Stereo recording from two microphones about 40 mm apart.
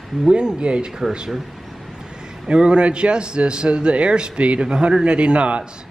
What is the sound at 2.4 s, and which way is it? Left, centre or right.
A man's voice, right.